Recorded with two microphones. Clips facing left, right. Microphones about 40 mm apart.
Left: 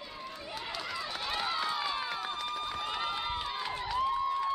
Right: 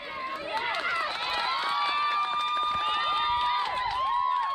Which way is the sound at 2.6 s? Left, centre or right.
Right.